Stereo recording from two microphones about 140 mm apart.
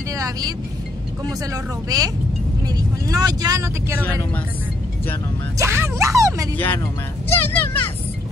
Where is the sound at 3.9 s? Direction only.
10° left (ahead or behind).